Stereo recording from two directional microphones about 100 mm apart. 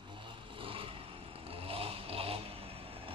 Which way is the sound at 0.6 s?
65° right (ahead or behind).